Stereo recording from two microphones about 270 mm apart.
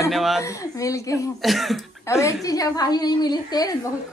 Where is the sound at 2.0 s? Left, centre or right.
Centre.